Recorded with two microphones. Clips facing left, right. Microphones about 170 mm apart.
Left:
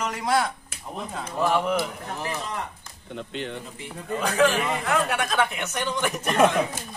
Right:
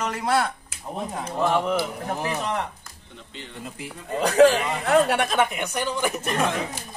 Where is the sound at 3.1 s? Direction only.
70° left (ahead or behind).